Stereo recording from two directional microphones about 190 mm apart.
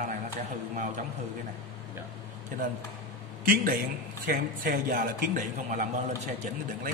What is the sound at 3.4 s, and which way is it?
A man's voice, 50° right (ahead or behind).